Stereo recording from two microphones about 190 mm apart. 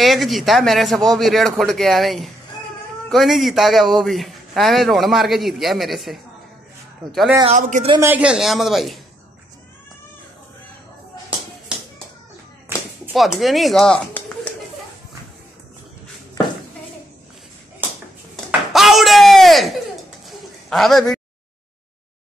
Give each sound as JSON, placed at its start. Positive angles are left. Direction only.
{"t": 0.0, "sound": "a man's voice", "side_deg": 0}
{"t": 7.4, "sound": "speech", "side_deg": -35}
{"t": 7.9, "sound": "a man's voice", "side_deg": -10}
{"t": 13.1, "sound": "speech", "side_deg": 0}
{"t": 18.3, "sound": "a sound", "side_deg": 0}